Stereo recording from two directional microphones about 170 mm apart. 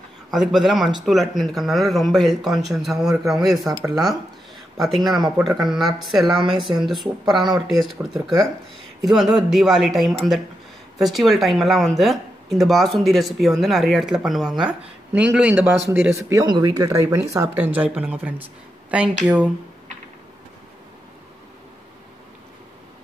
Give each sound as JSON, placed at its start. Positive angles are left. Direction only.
{"t": 0.3, "sound": "speech", "side_deg": 0}
{"t": 6.5, "sound": "speech", "side_deg": -30}
{"t": 6.8, "sound": "speech", "side_deg": 0}
{"t": 16.3, "sound": "speech", "side_deg": -20}